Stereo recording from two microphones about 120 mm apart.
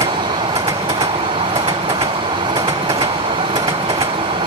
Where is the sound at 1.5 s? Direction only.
45° right (ahead or behind).